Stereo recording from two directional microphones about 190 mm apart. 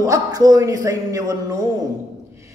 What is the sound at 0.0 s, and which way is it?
A man's voice, 15° right (ahead or behind).